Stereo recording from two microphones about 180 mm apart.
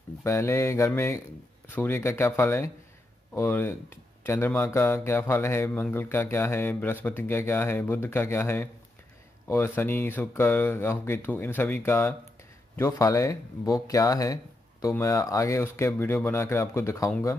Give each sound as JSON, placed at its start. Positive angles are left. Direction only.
{"t": 0.2, "sound": "speech", "side_deg": 15}